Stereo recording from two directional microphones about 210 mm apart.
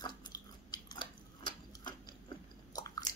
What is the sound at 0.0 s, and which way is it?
Biting, 20° left (ahead or behind).